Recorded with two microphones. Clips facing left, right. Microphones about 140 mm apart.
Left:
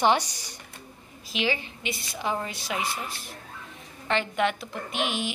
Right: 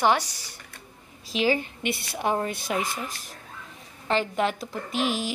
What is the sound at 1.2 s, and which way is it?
A woman's voice, 40° right (ahead or behind).